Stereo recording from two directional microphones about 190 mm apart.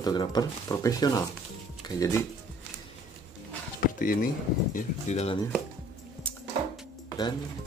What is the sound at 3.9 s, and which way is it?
Speech, 45° left (ahead or behind).